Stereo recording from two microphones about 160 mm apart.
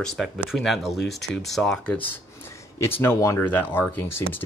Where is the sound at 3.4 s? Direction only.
10° left (ahead or behind).